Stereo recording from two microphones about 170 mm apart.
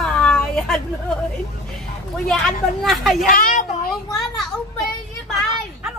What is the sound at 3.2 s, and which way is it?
Speech, 50° left (ahead or behind).